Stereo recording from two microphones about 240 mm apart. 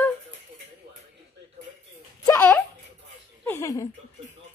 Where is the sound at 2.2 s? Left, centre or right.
Centre.